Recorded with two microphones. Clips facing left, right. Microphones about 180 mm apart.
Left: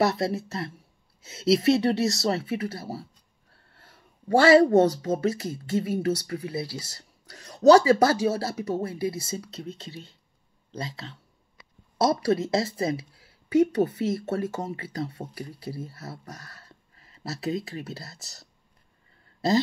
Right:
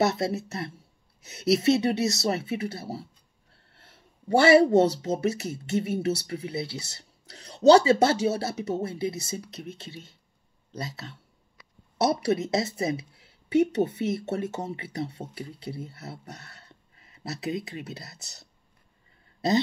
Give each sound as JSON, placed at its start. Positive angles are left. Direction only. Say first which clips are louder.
{"t": 0.0, "sound": "speech", "louder": "left 1 dB", "side_deg": -20}
{"t": 12.0, "sound": "speech", "louder": "left 1 dB", "side_deg": -20}